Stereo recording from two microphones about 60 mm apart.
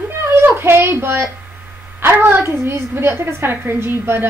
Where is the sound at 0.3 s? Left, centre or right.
Right.